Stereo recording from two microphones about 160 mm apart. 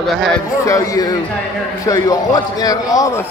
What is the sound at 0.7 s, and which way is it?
A man's voice, 20° left (ahead or behind).